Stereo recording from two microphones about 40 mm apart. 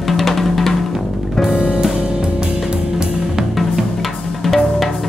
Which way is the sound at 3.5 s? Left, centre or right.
Centre.